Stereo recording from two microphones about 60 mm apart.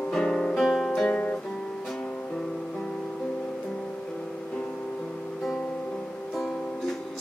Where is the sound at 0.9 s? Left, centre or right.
Centre.